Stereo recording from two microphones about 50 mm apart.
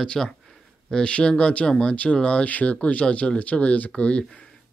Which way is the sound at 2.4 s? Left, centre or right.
Left.